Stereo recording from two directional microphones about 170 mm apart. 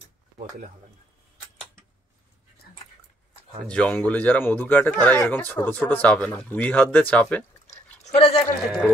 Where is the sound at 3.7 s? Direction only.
10° left (ahead or behind).